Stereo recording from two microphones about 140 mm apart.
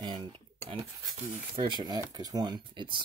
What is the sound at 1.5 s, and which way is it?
Speech, 35° right (ahead or behind).